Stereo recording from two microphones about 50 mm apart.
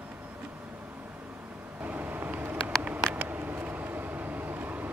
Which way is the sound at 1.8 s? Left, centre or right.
Right.